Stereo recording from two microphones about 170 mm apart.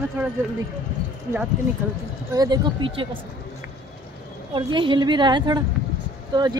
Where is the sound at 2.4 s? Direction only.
25° right (ahead or behind).